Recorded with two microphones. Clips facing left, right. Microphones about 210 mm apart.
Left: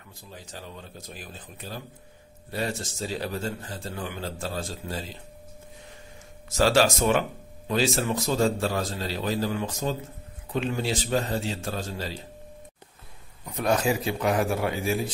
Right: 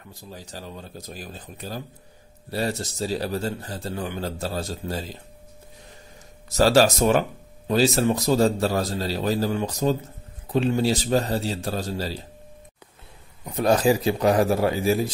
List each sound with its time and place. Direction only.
0.1 s speech: 40° right (ahead or behind)
6.5 s speech: 40° right (ahead or behind)
13.6 s speech: 35° right (ahead or behind)